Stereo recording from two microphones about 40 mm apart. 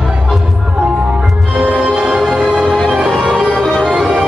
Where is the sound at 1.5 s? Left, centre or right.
Right.